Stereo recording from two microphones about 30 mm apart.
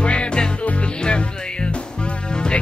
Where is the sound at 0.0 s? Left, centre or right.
Left.